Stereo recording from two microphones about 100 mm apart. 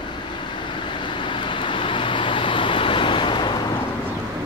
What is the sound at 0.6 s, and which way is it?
Vehicle, 55° left (ahead or behind).